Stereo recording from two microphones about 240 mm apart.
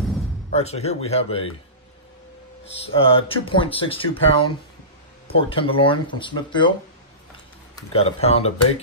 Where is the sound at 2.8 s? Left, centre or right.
Left.